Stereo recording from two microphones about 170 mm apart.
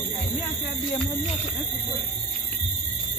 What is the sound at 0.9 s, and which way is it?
Speech, 40° left (ahead or behind).